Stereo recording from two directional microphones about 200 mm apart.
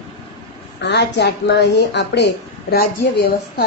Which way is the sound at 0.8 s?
60° left (ahead or behind).